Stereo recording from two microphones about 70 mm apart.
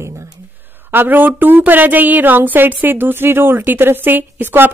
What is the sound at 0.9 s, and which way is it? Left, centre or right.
Speech, right.